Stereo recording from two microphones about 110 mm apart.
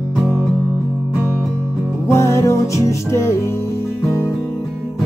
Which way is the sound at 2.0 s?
25° left (ahead or behind).